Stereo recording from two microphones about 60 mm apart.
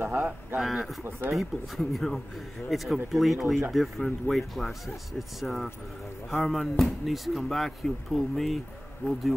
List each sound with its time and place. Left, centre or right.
0.1 s speech: right
0.6 s speech: centre
9.0 s speech: centre